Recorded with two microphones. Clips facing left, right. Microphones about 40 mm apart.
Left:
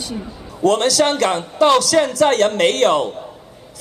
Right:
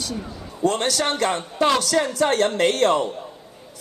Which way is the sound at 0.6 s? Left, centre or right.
Left.